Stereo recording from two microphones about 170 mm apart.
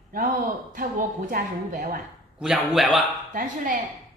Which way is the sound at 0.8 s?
55° right (ahead or behind).